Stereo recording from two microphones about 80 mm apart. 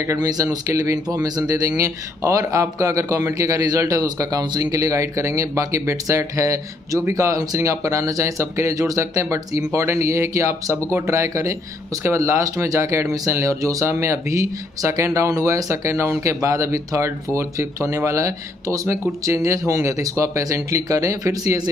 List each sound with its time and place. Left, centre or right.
0.0 s speech: right
0.3 s speech: right
1.8 s speech: right